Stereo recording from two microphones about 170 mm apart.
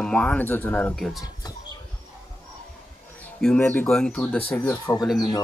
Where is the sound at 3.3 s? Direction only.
5° left (ahead or behind).